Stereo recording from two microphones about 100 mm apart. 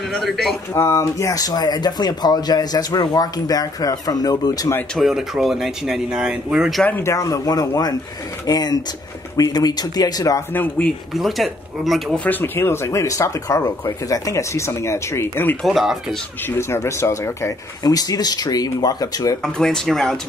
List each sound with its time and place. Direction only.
0.1 s speech: centre (ahead or behind)
0.7 s speech: 25° left (ahead or behind)
4.9 s speech: 5° right (ahead or behind)
7.0 s speech: 30° left (ahead or behind)
10.5 s speech: 20° left (ahead or behind)
11.1 s speech: centre (ahead or behind)
12.3 s speech: 20° left (ahead or behind)
15.6 s speech: centre (ahead or behind)
16.4 s speech: 25° left (ahead or behind)
19.4 s speech: 5° left (ahead or behind)